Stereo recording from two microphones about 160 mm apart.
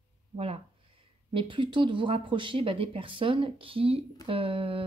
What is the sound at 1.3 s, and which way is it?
Speech, 30° right (ahead or behind).